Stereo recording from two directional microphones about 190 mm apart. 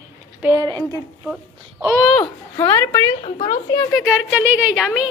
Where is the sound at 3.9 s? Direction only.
5° right (ahead or behind).